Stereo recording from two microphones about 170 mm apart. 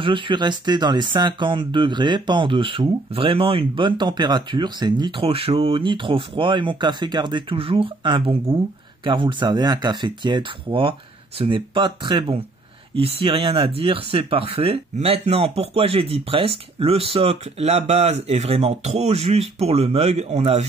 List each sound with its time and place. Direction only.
0.0 s speech: 30° right (ahead or behind)